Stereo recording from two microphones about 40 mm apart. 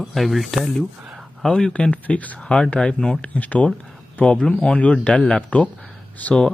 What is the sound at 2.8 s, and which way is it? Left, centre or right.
Speech, left.